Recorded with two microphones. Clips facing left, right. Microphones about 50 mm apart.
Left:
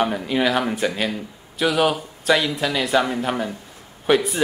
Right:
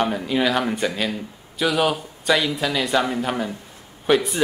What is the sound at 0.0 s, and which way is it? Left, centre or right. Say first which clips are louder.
A man's voice: left 1 dB; centre.